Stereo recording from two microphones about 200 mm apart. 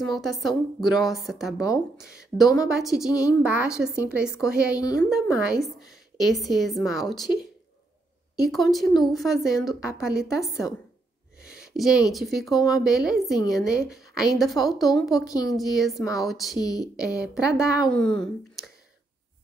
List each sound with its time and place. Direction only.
0.2 s a woman's voice: centre (ahead or behind)
4.7 s speech: 20° left (ahead or behind)
5.1 s a woman's voice: 5° right (ahead or behind)
8.5 s a woman's voice: centre (ahead or behind)
11.4 s a sound: 5° right (ahead or behind)
12.1 s a woman's voice: centre (ahead or behind)
15.2 s speech: 20° left (ahead or behind)
15.7 s a woman's voice: centre (ahead or behind)